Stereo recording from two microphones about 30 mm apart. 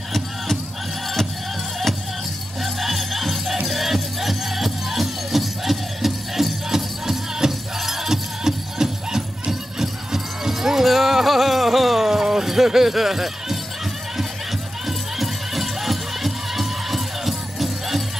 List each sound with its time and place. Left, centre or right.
2.6 s music: centre
6.7 s music: centre
7.8 s music: centre
8.5 s music: centre
14.9 s music: centre